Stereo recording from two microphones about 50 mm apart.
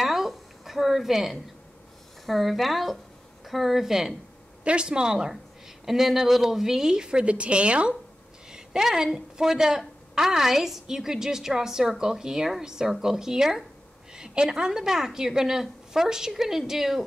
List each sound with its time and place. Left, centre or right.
0.0 s a sound: centre
2.2 s a woman's voice: centre
4.6 s a woman's voice: centre
8.5 s a woman's voice: centre